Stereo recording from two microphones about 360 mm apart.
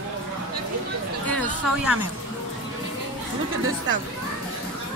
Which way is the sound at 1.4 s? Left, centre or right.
Centre.